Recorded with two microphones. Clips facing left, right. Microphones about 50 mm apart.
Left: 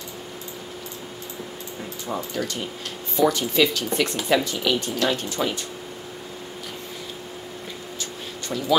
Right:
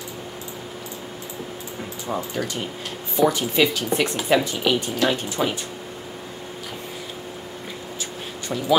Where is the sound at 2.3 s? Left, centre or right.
Centre.